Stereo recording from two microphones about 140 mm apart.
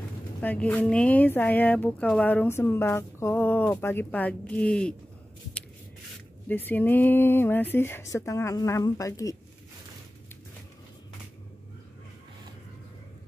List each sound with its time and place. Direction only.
0.4 s speech: 10° left (ahead or behind)
6.5 s speech: 15° left (ahead or behind)